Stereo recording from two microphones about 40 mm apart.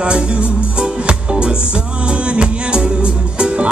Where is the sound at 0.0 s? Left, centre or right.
Right.